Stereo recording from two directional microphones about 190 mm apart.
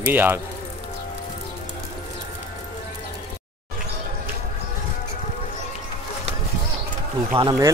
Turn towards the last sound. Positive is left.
turn(degrees=-25)  # may be behind; listen again after turning